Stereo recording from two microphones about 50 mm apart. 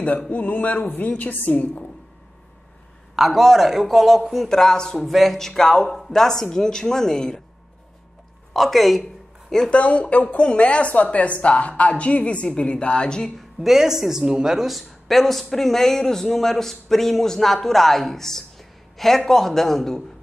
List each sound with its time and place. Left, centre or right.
0.3 s a woman's voice: left
3.2 s speech: centre
4.5 s speech: centre
4.9 s speech: centre
8.5 s speech: centre
9.7 s speech: left
13.6 s speech: centre